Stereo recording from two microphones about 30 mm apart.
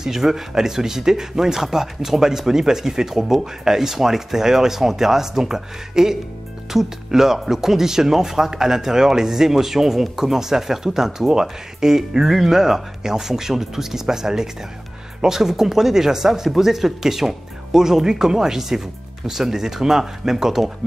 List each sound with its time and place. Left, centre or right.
0.0 s speech: centre